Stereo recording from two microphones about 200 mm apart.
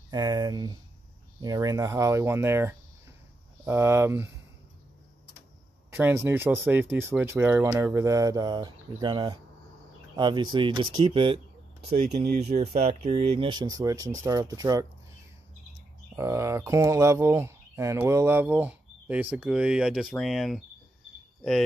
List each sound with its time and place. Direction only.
0.1 s speech: 20° right (ahead or behind)
5.9 s speech: 10° right (ahead or behind)
16.2 s speech: 15° right (ahead or behind)